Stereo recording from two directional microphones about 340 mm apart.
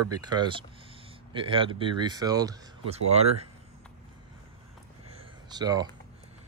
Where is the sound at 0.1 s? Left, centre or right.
Centre.